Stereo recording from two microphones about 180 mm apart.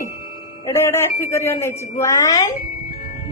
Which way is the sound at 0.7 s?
15° left (ahead or behind).